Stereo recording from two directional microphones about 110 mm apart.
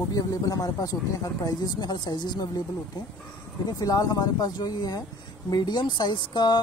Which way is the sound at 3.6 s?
35° left (ahead or behind).